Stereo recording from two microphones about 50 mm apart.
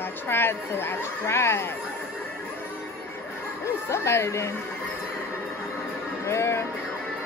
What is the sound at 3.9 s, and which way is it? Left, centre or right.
Speech, left.